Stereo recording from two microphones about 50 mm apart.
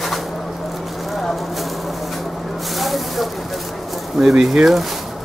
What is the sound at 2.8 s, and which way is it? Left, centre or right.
Spray, centre.